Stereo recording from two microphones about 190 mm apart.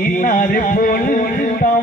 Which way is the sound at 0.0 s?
45° left (ahead or behind).